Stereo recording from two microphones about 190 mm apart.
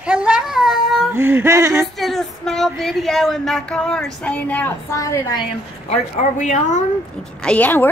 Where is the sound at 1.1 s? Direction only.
10° right (ahead or behind).